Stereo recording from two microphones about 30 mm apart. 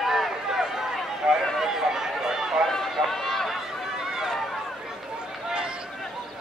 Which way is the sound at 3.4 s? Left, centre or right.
Centre.